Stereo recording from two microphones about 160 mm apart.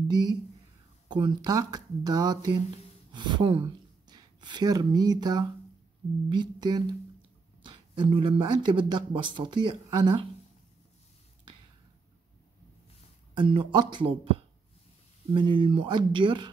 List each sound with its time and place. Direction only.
0.1 s speech: 25° right (ahead or behind)
13.4 s speech: 30° right (ahead or behind)
15.3 s speech: 30° right (ahead or behind)